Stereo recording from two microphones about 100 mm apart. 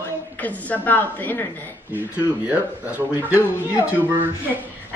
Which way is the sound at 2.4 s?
15° right (ahead or behind).